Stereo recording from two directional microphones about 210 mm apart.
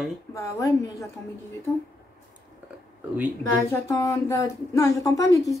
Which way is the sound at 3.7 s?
15° left (ahead or behind).